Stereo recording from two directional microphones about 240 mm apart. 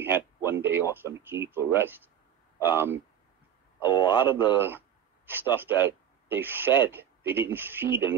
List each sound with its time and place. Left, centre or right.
0.0 s speech: centre
3.8 s a man's voice: centre
4.6 s speech: centre